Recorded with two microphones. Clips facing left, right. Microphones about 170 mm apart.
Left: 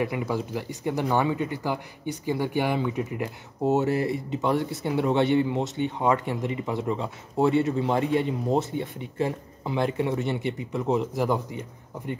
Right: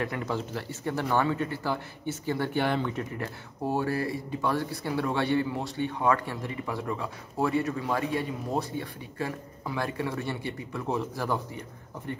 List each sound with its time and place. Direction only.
0.0 s speech: 10° left (ahead or behind)